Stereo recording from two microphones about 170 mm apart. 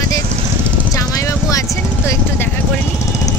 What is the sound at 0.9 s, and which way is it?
Vehicle, 20° left (ahead or behind).